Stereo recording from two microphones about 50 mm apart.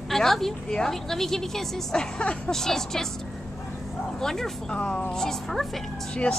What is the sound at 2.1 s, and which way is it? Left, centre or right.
Speech, left.